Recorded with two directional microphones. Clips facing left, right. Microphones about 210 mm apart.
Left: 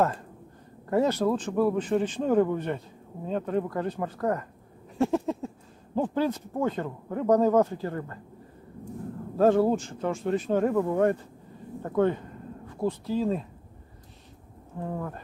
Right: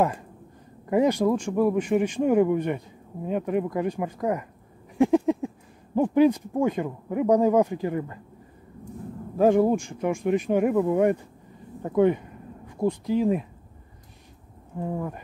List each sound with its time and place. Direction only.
0.8 s speech: 15° right (ahead or behind)
4.9 s a sound: 15° right (ahead or behind)
5.9 s speech: 15° right (ahead or behind)
9.4 s speech: 15° right (ahead or behind)
14.8 s speech: 10° right (ahead or behind)